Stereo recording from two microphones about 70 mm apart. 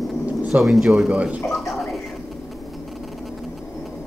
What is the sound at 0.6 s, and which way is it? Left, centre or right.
Speech, centre.